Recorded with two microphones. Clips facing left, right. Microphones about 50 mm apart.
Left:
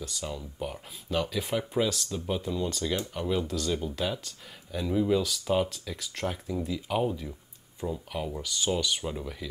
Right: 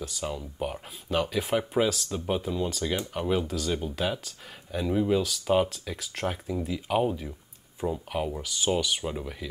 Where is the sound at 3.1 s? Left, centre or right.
Right.